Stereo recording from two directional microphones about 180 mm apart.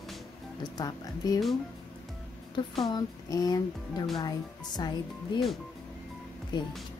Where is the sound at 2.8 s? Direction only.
20° left (ahead or behind).